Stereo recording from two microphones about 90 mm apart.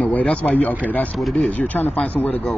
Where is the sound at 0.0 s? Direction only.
15° left (ahead or behind).